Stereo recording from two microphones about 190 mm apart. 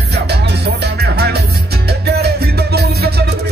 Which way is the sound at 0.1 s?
60° right (ahead or behind).